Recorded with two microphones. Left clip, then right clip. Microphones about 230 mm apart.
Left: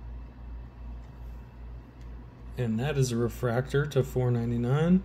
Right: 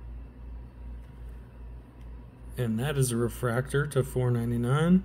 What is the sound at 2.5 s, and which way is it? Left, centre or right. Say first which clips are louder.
Speech: even; centre.